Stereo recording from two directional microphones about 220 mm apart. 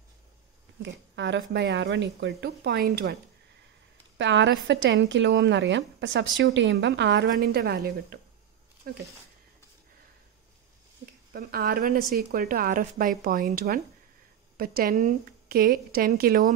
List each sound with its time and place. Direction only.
1.1 s a woman's voice: 55° right (ahead or behind)
4.2 s a woman's voice: 55° right (ahead or behind)
11.3 s a woman's voice: 40° right (ahead or behind)